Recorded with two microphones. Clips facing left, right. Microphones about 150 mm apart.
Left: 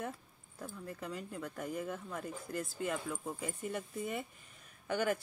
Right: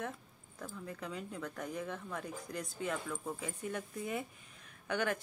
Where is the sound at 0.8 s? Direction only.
5° left (ahead or behind).